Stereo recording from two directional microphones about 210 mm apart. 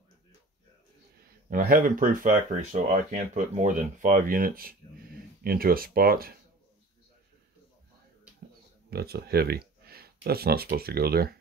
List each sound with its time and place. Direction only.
1.5 s speech: 45° right (ahead or behind)
8.9 s speech: 50° right (ahead or behind)